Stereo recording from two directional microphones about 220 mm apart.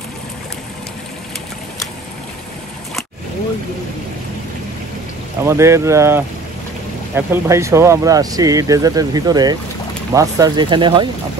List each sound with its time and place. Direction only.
5.4 s speech: 10° right (ahead or behind)